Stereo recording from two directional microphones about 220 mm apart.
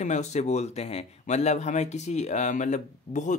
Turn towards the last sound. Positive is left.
turn(degrees=35)  # may be behind; listen again after turning